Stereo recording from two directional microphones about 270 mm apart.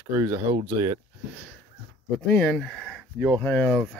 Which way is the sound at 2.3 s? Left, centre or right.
Centre.